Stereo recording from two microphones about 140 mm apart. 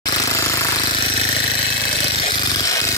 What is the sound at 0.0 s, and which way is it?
Jackhammer, 25° left (ahead or behind).